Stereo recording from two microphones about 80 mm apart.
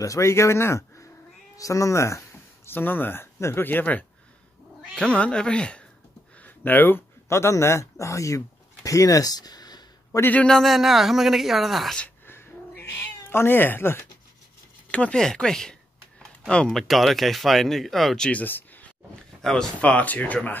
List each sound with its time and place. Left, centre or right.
0.0 s speech: left; by 5.9 s centre
6.4 s speech: left
10.4 s speech: centre
12.3 s dog: left
13.3 s speech: left
14.9 s speech: centre
16.2 s a sound: centre
16.6 s speech: centre
18.3 s a sound: left
19.4 s speech: centre
19.8 s speech: centre